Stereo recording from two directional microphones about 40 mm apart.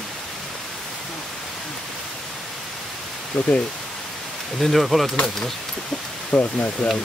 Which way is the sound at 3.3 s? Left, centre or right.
Left.